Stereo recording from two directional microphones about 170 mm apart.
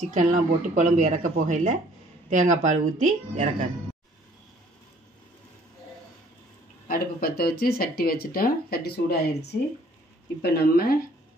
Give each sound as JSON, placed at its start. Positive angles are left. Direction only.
{"t": 0.1, "sound": "speech", "side_deg": -45}
{"t": 6.9, "sound": "speech", "side_deg": 60}